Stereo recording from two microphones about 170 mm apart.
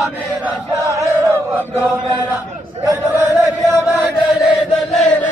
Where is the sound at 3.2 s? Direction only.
20° right (ahead or behind).